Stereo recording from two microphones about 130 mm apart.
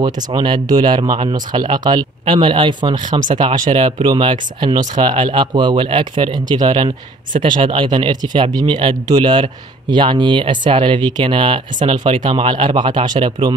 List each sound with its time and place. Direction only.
0.0 s speech: 35° right (ahead or behind)